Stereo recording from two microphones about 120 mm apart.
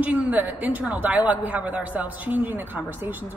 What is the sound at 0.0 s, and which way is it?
A woman's voice, 15° right (ahead or behind).